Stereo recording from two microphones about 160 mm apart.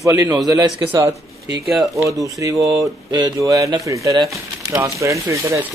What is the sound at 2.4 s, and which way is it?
Speech, 20° right (ahead or behind).